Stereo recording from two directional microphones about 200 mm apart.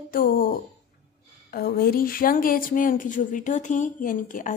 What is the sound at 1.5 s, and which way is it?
Speech, 45° left (ahead or behind).